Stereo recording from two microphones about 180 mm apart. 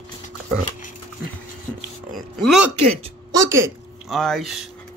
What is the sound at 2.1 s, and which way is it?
Speech, centre (ahead or behind).